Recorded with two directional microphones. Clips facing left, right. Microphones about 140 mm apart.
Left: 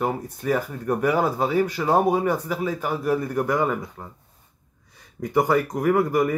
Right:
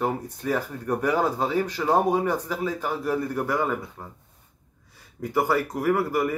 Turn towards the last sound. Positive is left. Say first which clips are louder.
# left 3 dB
turn(degrees=15)  # may be behind; listen again after turning